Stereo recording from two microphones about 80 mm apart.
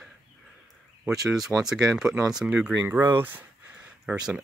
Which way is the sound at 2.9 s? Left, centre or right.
Right.